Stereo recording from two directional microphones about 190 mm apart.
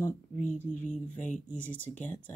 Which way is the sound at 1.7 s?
10° left (ahead or behind).